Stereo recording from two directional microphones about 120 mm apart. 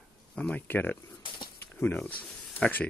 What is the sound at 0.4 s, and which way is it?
Speech, 15° left (ahead or behind).